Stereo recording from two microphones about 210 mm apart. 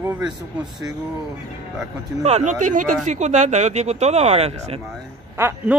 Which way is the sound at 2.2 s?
35° right (ahead or behind).